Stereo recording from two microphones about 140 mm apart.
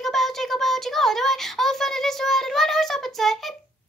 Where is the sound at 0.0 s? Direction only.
Centre (ahead or behind).